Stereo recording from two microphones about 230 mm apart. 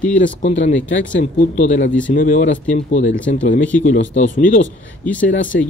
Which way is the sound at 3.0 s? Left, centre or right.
Left.